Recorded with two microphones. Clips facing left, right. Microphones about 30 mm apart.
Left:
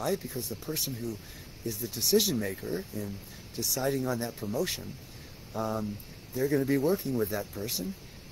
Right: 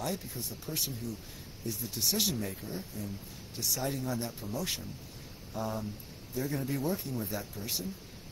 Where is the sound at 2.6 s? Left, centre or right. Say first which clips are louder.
Left 6 dB; left.